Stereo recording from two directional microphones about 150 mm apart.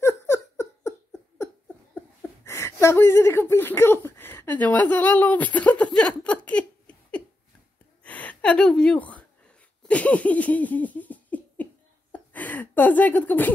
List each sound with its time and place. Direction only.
0.0 s giggle: 15° left (ahead or behind)
1.4 s a sound: 15° left (ahead or behind)
2.4 s speech: 20° left (ahead or behind)
8.0 s gasp: 10° left (ahead or behind)
9.8 s laughter: 10° left (ahead or behind)